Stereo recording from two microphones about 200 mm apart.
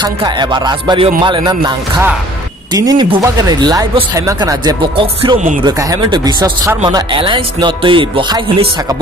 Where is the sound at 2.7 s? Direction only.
20° right (ahead or behind).